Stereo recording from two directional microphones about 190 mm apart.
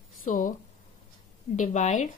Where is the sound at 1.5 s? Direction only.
40° left (ahead or behind).